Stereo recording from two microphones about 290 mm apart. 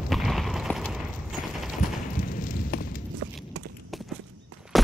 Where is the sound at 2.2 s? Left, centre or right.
Left.